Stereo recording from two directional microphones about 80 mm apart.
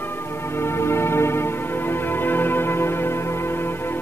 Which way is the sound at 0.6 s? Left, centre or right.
Left.